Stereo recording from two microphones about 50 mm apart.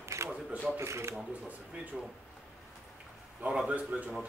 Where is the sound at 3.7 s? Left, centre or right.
Right.